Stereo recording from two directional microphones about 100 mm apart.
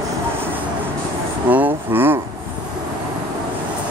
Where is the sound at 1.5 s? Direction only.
20° right (ahead or behind).